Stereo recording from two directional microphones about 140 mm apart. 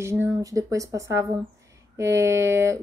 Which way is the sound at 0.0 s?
20° right (ahead or behind).